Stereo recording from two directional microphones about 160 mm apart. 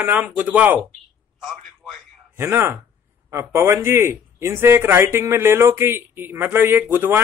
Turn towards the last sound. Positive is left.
turn(degrees=-15)  # may be behind; listen again after turning